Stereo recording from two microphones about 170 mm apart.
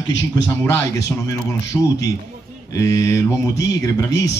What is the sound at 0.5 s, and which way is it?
Speech, 20° left (ahead or behind).